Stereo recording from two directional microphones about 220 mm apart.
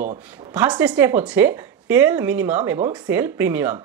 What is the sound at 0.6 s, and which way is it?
Speech, 5° right (ahead or behind).